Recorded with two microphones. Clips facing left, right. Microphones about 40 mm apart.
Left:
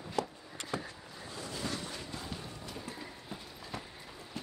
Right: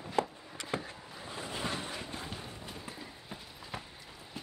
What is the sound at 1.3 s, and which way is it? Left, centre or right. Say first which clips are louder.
Vehicle: right 2 dB; right.